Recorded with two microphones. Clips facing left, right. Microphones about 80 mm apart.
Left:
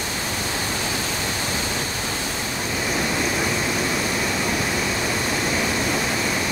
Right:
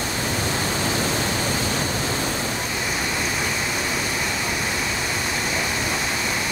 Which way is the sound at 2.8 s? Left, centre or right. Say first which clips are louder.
Left 5 dB; centre.